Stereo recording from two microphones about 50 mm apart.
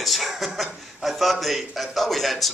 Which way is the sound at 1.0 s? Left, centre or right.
Centre.